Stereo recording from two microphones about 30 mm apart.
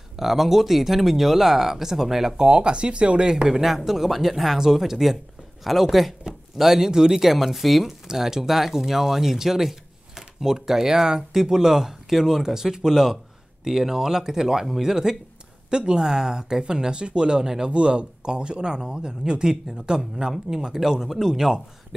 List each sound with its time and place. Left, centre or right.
0.1 s speech: centre
2.3 s speech: right
3.4 s speech: centre
7.2 s speech: centre
8.1 s speech: centre; by 17.4 s right
17.4 s speech: centre
17.6 s speech: right; by 21.5 s centre